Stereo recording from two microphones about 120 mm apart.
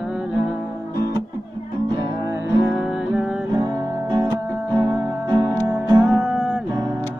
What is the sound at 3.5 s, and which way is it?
Music, 25° right (ahead or behind).